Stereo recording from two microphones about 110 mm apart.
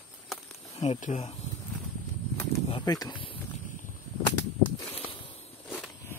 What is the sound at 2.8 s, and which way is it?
Speech, 35° left (ahead or behind).